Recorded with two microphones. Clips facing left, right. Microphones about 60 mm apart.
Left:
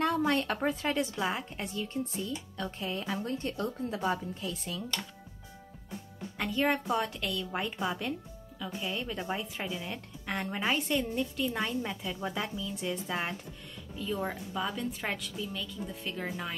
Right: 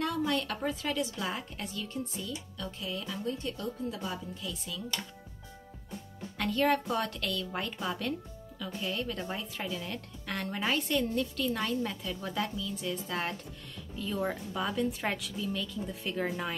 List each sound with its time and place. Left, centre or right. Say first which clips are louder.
0.0 s speech: left 3 dB; left
6.3 s a woman's voice: right 2 dB; centre
14.7 s a woman's voice: right 3 dB; centre